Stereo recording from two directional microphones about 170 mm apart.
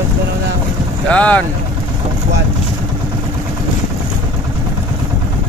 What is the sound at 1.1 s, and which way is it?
Speech, 10° left (ahead or behind).